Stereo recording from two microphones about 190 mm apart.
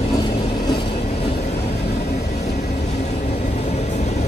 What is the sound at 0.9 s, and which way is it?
Vehicle, 35° left (ahead or behind).